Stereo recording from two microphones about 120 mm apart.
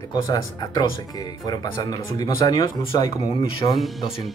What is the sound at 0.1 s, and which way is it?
Speech, 35° left (ahead or behind).